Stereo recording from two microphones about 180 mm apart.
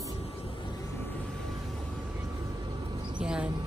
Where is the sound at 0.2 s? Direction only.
35° left (ahead or behind).